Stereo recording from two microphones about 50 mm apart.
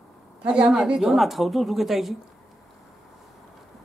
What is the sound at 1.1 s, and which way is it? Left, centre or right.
Speech, centre.